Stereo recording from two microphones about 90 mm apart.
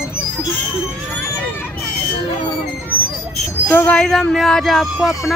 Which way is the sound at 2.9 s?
20° left (ahead or behind).